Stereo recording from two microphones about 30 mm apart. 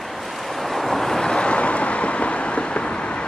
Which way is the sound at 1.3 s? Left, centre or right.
Left.